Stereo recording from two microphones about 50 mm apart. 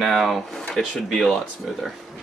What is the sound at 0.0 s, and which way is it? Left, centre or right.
Speech, centre.